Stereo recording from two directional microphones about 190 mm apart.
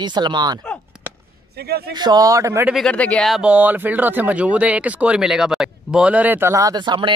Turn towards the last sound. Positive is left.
turn(degrees=-25)  # may be behind; listen again after turning